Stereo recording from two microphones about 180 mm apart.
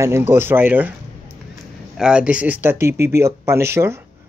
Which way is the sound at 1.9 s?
5° right (ahead or behind).